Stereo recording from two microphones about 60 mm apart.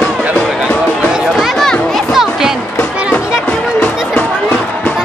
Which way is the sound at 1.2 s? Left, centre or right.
Centre.